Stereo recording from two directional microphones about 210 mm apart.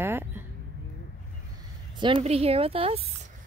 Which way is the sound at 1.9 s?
25° right (ahead or behind).